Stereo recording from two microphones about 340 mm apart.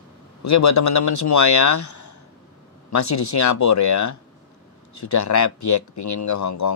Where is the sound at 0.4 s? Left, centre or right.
Left.